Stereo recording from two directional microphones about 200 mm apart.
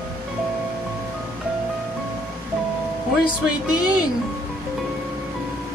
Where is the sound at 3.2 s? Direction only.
20° left (ahead or behind).